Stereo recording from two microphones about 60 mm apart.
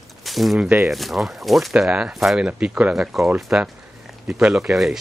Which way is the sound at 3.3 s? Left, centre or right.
Centre.